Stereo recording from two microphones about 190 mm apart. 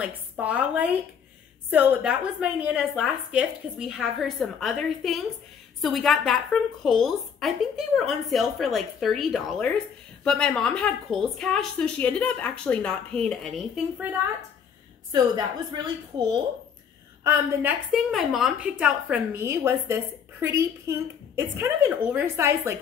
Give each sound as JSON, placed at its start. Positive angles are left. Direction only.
{"t": 0.0, "sound": "a woman's voice", "side_deg": -5}
{"t": 15.3, "sound": "a woman's voice", "side_deg": -20}
{"t": 17.2, "sound": "a woman's voice", "side_deg": -10}